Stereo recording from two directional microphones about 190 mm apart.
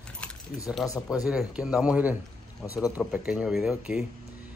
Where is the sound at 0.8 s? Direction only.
20° left (ahead or behind).